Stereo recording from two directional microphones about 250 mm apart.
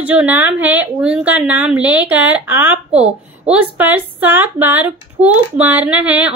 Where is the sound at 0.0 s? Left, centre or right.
Centre.